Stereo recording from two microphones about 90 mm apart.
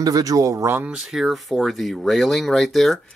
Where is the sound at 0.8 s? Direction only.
5° right (ahead or behind).